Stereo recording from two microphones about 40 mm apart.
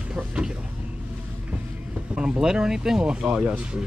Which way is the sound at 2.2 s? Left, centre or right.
Centre.